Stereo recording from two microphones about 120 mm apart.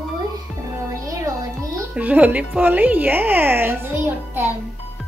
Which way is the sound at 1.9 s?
15° right (ahead or behind).